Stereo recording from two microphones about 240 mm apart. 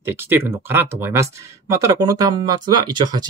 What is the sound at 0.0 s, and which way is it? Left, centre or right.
Speech, centre.